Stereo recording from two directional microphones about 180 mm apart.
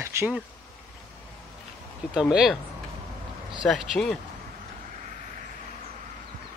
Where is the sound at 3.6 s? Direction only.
Centre (ahead or behind).